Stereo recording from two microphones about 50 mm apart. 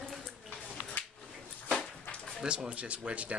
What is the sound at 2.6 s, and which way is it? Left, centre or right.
Speech, right.